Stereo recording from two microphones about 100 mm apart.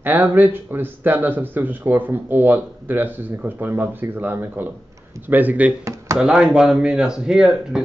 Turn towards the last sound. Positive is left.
turn(degrees=-5)  # may be behind; listen again after turning